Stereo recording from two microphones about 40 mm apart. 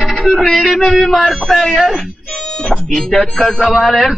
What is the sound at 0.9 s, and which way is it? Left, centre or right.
Speech, centre.